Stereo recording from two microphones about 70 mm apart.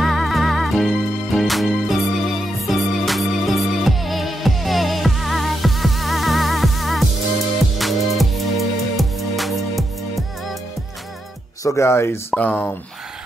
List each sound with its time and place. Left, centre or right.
0.0 s music: centre
11.6 s speech: left
12.4 s speech: left